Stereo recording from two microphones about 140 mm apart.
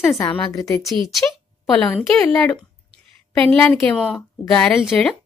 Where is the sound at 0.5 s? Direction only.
25° left (ahead or behind).